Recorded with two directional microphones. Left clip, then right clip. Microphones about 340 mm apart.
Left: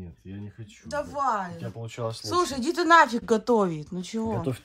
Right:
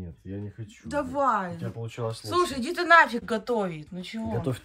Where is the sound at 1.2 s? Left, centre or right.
Centre.